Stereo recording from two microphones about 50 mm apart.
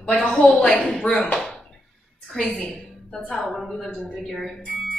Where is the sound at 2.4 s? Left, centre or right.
Left.